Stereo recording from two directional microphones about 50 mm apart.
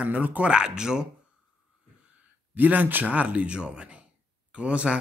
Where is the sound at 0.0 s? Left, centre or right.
Right.